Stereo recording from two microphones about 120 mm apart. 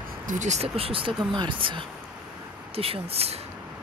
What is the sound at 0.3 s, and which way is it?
Speech, 80° right.